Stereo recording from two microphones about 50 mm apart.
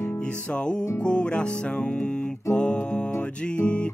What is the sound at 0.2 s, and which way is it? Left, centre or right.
Music, centre.